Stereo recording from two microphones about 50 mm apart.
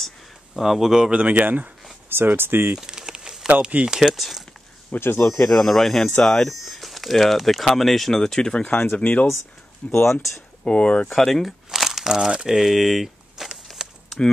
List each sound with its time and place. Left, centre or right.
0.6 s speech: centre
1.1 s speech: right
2.0 s speech: right
2.8 s a sound: centre
3.6 s speech: right
3.9 s speech: centre
5.0 s speech: left
5.4 s speech: centre
6.5 s speech: centre; by 11.1 s left
11.1 s speech: centre
11.7 s crumpling: centre
12.0 s speech: centre
14.0 s a sound: centre